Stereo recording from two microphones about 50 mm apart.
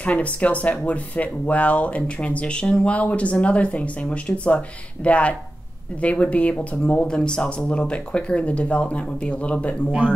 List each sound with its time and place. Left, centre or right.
0.0 s speech: left